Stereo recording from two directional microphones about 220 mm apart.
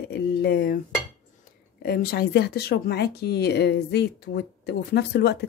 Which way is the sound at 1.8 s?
45° left (ahead or behind).